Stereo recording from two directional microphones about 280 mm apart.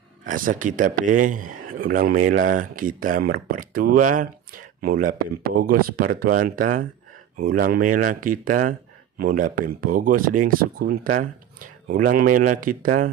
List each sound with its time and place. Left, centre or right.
0.2 s speech: right